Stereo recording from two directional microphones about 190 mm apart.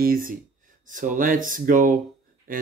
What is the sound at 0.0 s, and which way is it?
Speech, 50° right (ahead or behind).